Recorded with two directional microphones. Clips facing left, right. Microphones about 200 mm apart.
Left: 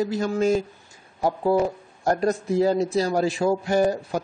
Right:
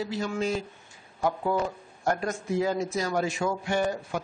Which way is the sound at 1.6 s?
35° left (ahead or behind).